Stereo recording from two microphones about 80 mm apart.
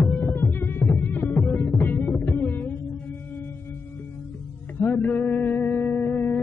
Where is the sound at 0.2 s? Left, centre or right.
Left.